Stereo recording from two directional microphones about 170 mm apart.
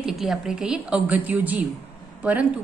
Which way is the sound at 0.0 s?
Centre (ahead or behind).